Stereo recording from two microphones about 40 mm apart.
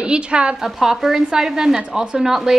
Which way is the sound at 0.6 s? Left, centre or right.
Centre.